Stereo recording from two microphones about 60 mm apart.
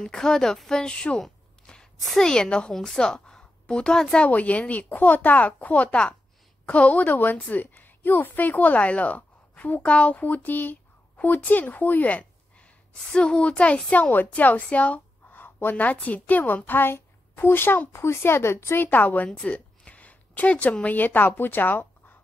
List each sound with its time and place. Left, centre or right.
0.0 s a woman's voice: centre
1.7 s a sound: centre
2.0 s a woman's voice: centre; by 18.9 s left
18.9 s a woman's voice: left